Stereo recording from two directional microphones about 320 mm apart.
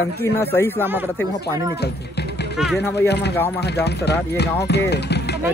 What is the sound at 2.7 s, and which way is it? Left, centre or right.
Speech, left.